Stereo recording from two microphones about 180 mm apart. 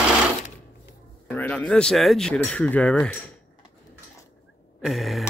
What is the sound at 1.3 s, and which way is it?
Speech, 10° left (ahead or behind).